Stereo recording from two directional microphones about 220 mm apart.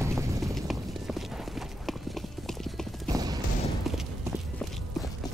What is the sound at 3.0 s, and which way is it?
Mechanisms, 15° right (ahead or behind).